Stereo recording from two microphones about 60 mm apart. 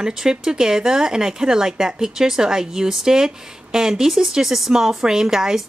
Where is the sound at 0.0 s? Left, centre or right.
Centre.